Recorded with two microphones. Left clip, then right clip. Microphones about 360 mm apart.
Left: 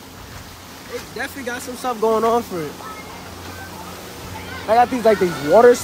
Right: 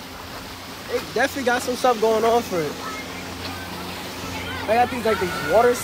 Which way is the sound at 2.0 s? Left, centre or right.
Centre.